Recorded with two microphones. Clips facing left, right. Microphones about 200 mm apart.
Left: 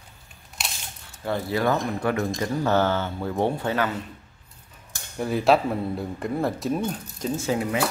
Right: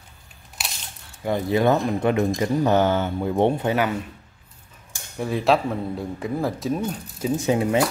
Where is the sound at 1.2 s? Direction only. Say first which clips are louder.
Right 4 dB; 20° right (ahead or behind).